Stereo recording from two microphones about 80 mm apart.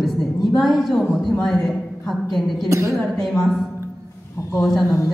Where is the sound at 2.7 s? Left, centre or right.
Right.